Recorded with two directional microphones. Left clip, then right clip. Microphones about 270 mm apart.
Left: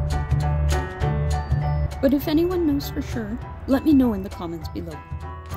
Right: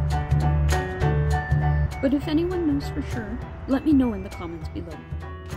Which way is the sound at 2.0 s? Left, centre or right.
Left.